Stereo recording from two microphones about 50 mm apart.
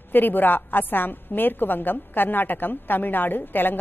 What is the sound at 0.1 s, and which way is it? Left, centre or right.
A woman's voice, left.